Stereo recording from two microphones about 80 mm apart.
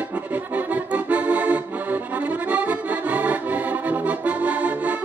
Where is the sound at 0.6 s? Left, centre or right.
Centre.